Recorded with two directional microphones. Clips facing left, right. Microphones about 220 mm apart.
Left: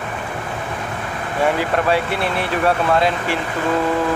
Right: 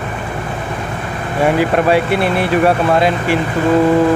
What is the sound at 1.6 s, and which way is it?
Speech, 10° right (ahead or behind).